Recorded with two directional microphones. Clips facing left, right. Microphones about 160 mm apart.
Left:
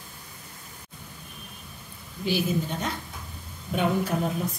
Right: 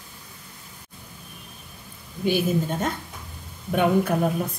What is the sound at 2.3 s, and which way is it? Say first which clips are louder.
Speech: right 4 dB; 50° right (ahead or behind).